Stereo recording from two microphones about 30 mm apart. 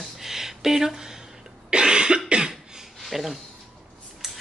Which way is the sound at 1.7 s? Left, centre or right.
Right.